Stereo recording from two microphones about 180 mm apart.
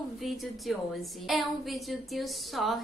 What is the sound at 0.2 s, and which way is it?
A woman's voice, centre (ahead or behind).